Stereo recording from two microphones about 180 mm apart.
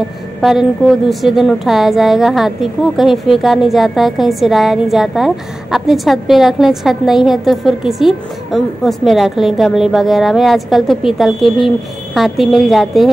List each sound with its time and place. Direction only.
0.4 s a woman's voice: centre (ahead or behind)